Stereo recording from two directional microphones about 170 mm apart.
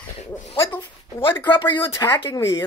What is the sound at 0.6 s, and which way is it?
Speech, 15° left (ahead or behind).